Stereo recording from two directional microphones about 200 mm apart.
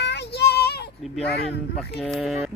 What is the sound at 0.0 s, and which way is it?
Child singing, 55° left (ahead or behind).